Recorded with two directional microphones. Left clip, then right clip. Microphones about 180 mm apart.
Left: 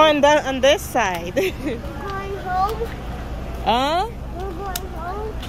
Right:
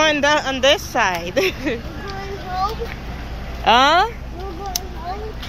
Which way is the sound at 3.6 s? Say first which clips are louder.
Right 6 dB; 10° left (ahead or behind).